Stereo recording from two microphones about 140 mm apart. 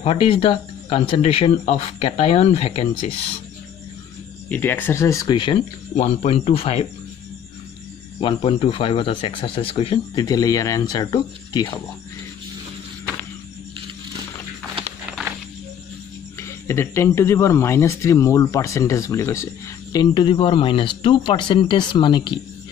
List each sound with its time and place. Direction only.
0.0 s speech: 40° left (ahead or behind)
4.5 s speech: 15° left (ahead or behind); by 5.6 s 30° left (ahead or behind)
5.9 s speech: 50° left (ahead or behind)
8.2 s speech: 40° left (ahead or behind)
10.1 s speech: 25° left (ahead or behind)
16.3 s speech: 20° left (ahead or behind); by 22.4 s 35° left (ahead or behind)